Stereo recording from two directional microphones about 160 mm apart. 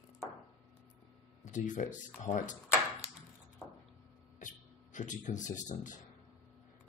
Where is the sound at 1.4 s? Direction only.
50° left (ahead or behind).